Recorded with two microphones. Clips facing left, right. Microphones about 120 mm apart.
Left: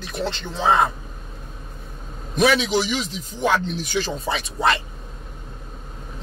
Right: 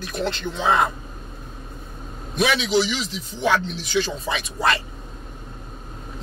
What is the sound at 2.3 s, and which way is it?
A man's voice, 40° left (ahead or behind).